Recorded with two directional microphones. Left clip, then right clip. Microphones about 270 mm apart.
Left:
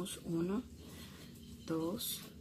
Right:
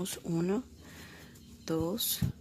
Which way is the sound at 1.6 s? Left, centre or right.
Right.